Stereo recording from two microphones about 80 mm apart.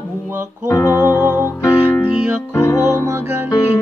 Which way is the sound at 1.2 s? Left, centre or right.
Right.